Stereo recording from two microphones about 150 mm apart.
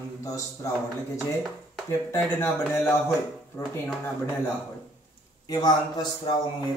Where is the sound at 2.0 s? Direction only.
15° left (ahead or behind).